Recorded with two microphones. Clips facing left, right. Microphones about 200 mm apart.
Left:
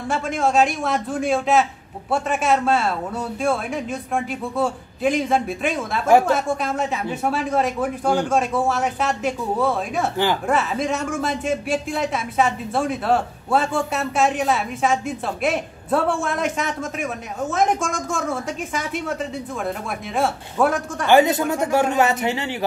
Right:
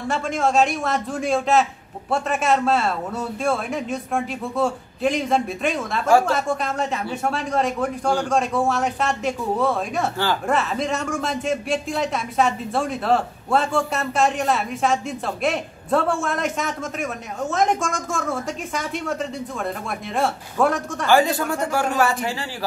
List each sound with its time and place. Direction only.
0.1 s speech: centre (ahead or behind)
6.0 s speech: 20° left (ahead or behind)
6.3 s speech: centre (ahead or behind)
20.2 s speech: centre (ahead or behind)
21.1 s speech: 20° left (ahead or behind)